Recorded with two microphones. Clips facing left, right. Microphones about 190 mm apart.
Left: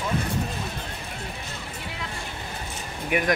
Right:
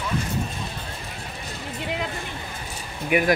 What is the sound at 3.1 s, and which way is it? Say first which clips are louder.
Speech: right 4 dB; 5° right (ahead or behind).